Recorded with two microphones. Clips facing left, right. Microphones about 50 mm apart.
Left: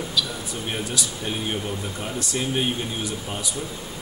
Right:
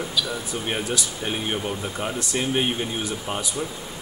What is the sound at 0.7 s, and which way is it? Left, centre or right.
Speech, right.